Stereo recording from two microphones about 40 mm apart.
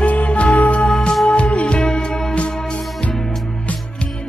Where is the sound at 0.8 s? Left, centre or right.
Centre.